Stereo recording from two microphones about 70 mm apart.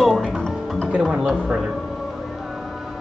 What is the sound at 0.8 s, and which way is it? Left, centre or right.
Speech, centre.